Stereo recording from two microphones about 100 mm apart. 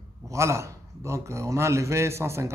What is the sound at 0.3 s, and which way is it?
Speech, 30° right (ahead or behind).